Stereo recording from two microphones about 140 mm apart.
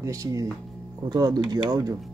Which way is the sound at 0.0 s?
25° right (ahead or behind).